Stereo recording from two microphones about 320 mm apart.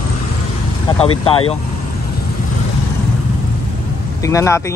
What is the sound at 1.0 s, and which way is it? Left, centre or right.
Speech, centre.